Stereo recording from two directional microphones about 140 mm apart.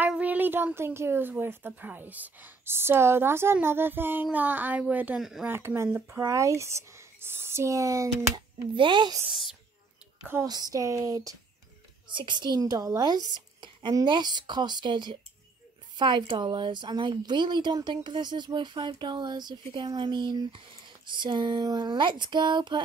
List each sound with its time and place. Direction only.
0.0 s speech: 10° right (ahead or behind)
5.5 s speech: 15° right (ahead or behind)
8.7 s a woman's voice: 35° right (ahead or behind)
10.4 s a woman's voice: 30° right (ahead or behind)